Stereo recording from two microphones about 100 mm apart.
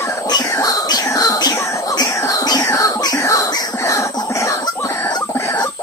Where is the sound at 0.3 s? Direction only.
40° left (ahead or behind).